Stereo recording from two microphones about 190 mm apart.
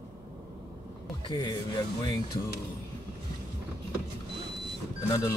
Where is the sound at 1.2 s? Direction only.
25° left (ahead or behind).